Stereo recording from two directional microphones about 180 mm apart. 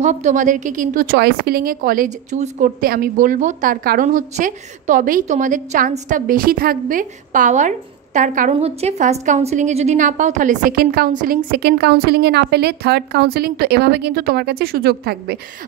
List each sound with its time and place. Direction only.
0.0 s a woman's voice: 40° right (ahead or behind)
2.8 s a woman's voice: 55° right (ahead or behind)